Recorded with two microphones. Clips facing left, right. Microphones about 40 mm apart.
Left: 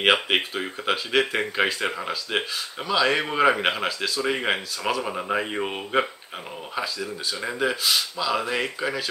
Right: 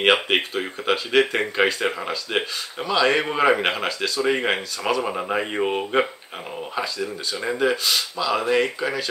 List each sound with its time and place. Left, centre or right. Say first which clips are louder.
0.0 s speech: right 2 dB; centre